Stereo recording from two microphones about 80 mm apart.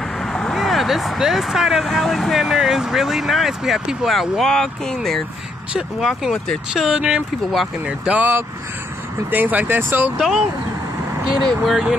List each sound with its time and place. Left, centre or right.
0.3 s speech: centre
5.7 s speech: centre; by 10.1 s right
10.1 s speech: centre
11.4 s speech: centre